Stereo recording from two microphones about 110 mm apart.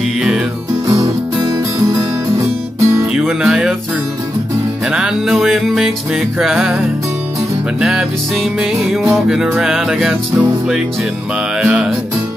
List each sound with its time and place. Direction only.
0.8 s music: 30° right (ahead or behind)
3.1 s music: 5° right (ahead or behind)
4.9 s music: 5° right (ahead or behind)
11.6 s music: 10° right (ahead or behind)